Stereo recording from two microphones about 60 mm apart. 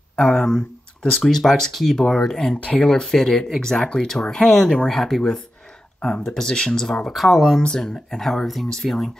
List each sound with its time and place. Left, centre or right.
0.1 s speech: centre
2.6 s speech: centre
2.9 s speech: centre
7.1 s speech: centre
7.6 s speech: centre